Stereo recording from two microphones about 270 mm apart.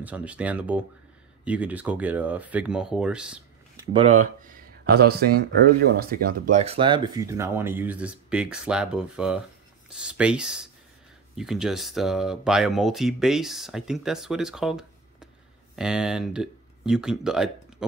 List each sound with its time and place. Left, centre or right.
0.0 s speech: centre
4.0 s speech: right; by 17.8 s centre